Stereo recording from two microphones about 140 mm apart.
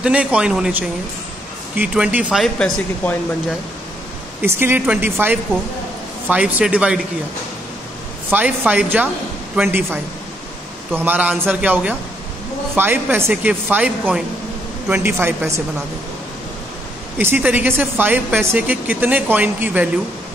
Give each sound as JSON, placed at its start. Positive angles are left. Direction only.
{"t": 0.0, "sound": "speech", "side_deg": -10}
{"t": 4.4, "sound": "speech", "side_deg": -15}
{"t": 8.3, "sound": "speech", "side_deg": -10}
{"t": 17.2, "sound": "speech", "side_deg": -15}